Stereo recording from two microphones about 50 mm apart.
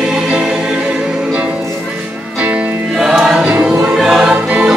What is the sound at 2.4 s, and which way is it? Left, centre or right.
Music, right.